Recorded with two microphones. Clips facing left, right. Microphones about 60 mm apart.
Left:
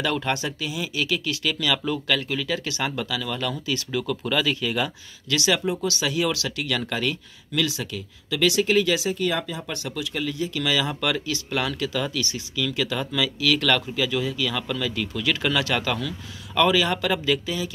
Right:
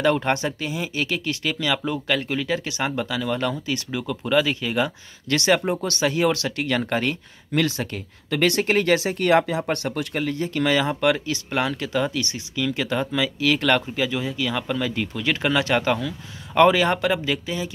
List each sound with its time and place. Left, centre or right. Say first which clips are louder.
0.0 s speech: right 4 dB; right
5.3 s speech: right 3 dB; right
16.5 s speech: right 4 dB; right
17.0 s speech: right 1 dB; right